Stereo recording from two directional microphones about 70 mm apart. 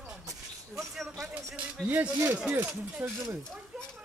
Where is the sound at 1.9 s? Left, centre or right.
Right.